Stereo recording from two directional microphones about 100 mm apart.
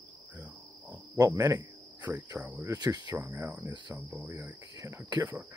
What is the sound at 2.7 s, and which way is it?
Speech, 40° right (ahead or behind).